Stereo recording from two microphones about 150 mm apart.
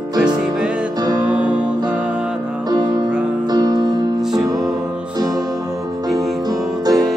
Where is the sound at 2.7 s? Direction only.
25° right (ahead or behind).